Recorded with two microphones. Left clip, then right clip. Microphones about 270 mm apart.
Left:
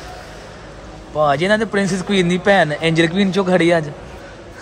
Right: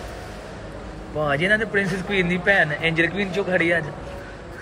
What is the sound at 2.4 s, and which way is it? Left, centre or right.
A man's voice, left.